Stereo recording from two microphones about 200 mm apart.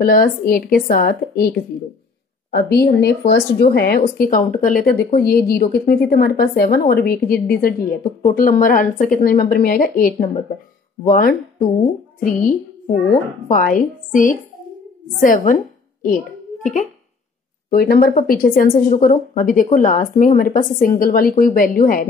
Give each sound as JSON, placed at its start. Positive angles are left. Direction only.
{"t": 0.0, "sound": "speech", "side_deg": 45}
{"t": 2.5, "sound": "speech", "side_deg": 50}
{"t": 13.5, "sound": "a woman's voice", "side_deg": 40}
{"t": 17.6, "sound": "speech", "side_deg": 45}